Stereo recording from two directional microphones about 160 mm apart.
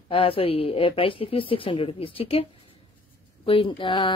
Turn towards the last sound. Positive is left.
turn(degrees=30)  # may be behind; listen again after turning